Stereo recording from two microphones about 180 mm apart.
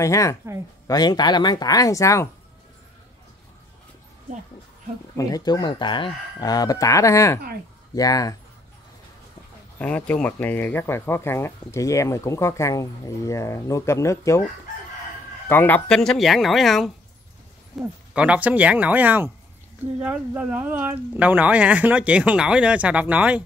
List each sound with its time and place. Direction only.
0.0 s speech: 15° left (ahead or behind)
5.1 s speech: 20° left (ahead or behind)
9.8 s speech: 10° left (ahead or behind)
15.4 s speech: 10° left (ahead or behind); by 23.4 s 10° right (ahead or behind)